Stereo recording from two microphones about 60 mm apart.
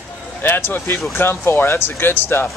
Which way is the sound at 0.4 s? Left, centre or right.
Left.